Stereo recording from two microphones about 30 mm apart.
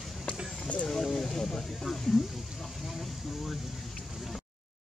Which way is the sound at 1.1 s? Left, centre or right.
Centre.